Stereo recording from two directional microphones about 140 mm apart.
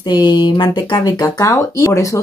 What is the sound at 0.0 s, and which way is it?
Speech, 30° left (ahead or behind).